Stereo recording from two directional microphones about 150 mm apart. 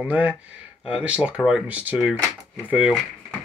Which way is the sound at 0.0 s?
10° right (ahead or behind).